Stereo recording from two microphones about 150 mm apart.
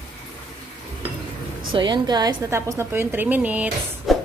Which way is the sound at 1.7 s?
30° right (ahead or behind).